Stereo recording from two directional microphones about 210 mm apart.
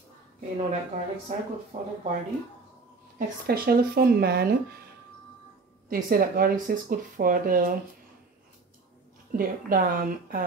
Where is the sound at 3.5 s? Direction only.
45° right (ahead or behind).